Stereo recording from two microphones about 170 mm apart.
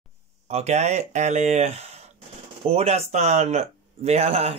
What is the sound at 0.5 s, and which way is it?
Speech, 40° right (ahead or behind).